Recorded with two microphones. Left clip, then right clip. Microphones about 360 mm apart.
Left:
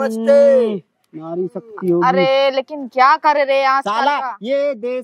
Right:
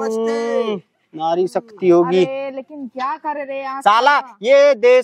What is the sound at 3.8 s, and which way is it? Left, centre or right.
Speech, right.